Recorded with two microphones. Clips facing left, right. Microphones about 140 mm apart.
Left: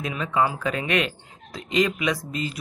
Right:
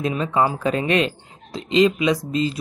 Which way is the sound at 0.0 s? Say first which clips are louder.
Right 4 dB; 30° right (ahead or behind).